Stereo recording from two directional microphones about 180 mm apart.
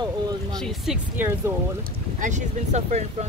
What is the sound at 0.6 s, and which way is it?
Speech, centre (ahead or behind).